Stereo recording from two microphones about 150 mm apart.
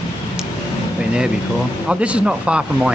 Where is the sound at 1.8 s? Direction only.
5° right (ahead or behind).